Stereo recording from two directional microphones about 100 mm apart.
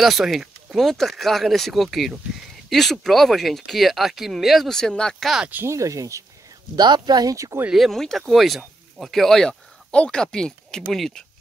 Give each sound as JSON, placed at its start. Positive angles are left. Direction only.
{"t": 0.0, "sound": "speech", "side_deg": 0}
{"t": 5.5, "sound": "speech", "side_deg": -25}
{"t": 6.7, "sound": "speech", "side_deg": -45}
{"t": 7.7, "sound": "speech", "side_deg": 0}